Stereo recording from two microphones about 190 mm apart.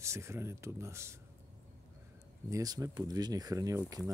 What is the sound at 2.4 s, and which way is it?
Speech, 15° right (ahead or behind).